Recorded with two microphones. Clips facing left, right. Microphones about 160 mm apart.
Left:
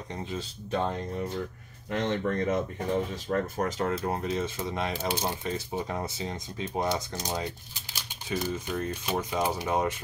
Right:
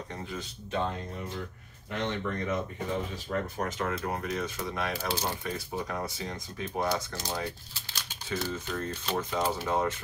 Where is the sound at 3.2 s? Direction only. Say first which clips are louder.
Left 4 dB; 40° left (ahead or behind); by 9.9 s 15° left (ahead or behind).